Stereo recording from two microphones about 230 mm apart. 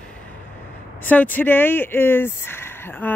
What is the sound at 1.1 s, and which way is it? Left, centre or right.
Speech, centre.